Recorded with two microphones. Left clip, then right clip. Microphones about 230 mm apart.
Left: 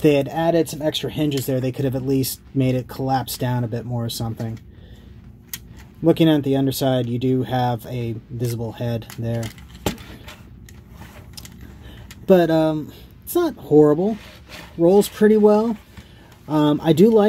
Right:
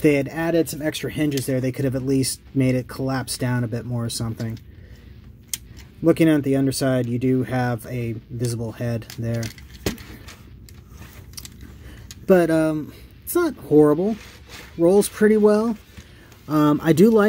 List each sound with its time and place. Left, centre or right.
0.0 s speech: centre
6.0 s speech: centre
12.3 s speech: centre